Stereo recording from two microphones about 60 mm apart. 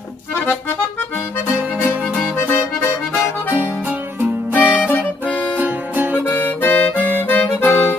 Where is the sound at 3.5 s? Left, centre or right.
Right.